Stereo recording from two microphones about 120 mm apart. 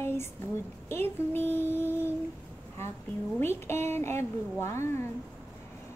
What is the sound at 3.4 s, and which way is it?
A woman's voice, 20° left (ahead or behind).